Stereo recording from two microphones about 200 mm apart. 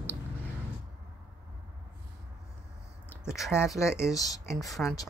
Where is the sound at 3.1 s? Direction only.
5° right (ahead or behind).